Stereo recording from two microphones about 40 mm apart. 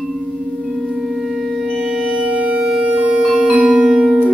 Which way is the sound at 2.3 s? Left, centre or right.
Right.